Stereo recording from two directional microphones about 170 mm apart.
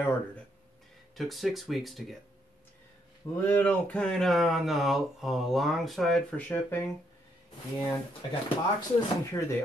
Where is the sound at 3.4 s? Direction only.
10° left (ahead or behind).